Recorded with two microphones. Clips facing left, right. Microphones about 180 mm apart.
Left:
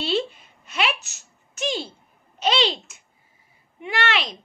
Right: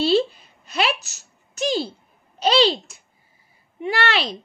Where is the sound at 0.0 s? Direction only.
35° right (ahead or behind).